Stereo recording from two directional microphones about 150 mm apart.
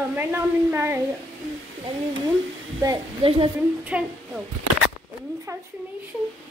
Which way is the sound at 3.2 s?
40° right (ahead or behind).